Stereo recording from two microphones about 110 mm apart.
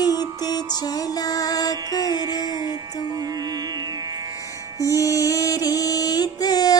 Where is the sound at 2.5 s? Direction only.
35° right (ahead or behind).